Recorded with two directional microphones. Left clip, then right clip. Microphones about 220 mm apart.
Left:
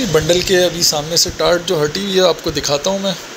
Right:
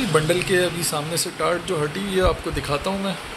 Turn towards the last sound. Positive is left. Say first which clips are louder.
# left 8 dB
turn(degrees=15)  # may be behind; listen again after turning